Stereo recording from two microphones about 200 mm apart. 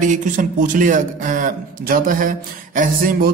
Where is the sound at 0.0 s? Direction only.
40° right (ahead or behind).